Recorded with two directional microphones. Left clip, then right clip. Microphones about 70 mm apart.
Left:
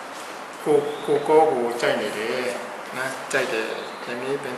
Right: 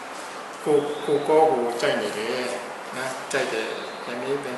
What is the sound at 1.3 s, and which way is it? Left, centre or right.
Speech, centre.